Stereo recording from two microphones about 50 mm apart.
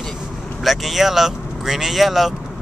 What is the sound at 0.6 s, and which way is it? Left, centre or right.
Speech, centre.